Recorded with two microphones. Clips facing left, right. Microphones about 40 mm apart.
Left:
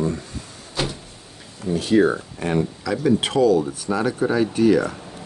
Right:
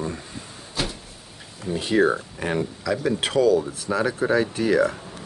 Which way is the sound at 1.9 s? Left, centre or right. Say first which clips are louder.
Left 2 dB; centre.